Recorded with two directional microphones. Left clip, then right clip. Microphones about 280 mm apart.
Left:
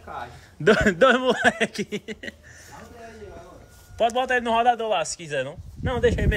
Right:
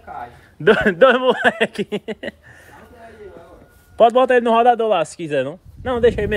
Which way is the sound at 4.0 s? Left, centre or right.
Centre.